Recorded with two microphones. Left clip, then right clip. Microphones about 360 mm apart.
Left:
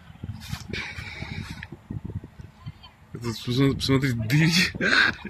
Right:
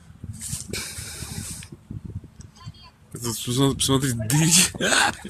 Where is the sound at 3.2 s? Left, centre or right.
Centre.